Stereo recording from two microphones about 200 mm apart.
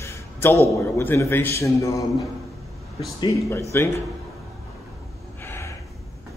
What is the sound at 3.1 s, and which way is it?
Speech, 15° left (ahead or behind).